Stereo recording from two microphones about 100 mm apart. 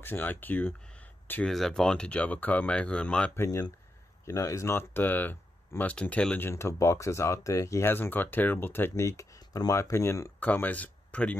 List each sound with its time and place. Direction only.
0.0 s speech: 20° left (ahead or behind)
1.4 s speech: 5° left (ahead or behind)
3.3 s speech: 30° left (ahead or behind)
6.5 s speech: 30° left (ahead or behind)
10.4 s speech: 15° left (ahead or behind)